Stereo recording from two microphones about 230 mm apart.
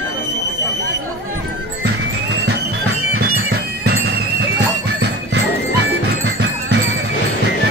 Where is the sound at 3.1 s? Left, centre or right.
Right.